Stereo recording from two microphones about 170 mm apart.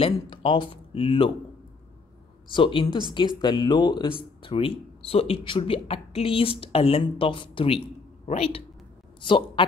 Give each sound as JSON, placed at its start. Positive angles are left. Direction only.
{"t": 0.0, "sound": "speech", "side_deg": 30}
{"t": 2.5, "sound": "a man's voice", "side_deg": 30}